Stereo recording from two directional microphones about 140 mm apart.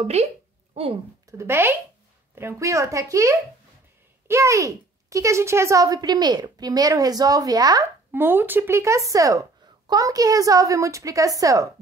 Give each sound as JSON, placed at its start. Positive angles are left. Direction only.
{"t": 0.0, "sound": "a woman's voice", "side_deg": -50}
{"t": 1.4, "sound": "speech", "side_deg": -20}
{"t": 8.1, "sound": "speech", "side_deg": -15}